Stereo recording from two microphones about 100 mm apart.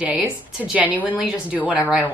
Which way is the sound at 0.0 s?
15° right (ahead or behind).